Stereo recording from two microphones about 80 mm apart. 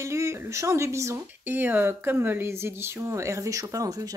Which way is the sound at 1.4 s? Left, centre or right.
Right.